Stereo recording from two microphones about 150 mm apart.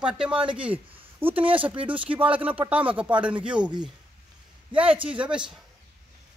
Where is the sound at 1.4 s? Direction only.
35° right (ahead or behind).